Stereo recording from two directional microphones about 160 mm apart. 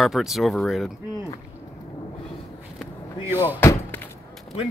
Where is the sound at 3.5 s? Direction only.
15° left (ahead or behind).